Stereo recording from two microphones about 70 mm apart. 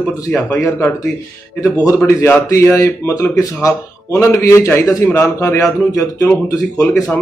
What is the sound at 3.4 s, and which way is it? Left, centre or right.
A man's voice, left.